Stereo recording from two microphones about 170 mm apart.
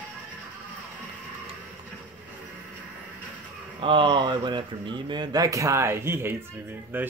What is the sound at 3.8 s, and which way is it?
Speech, 30° right (ahead or behind).